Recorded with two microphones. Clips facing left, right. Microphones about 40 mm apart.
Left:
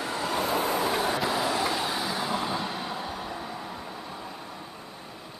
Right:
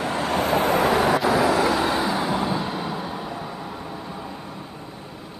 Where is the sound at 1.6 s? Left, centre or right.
Right.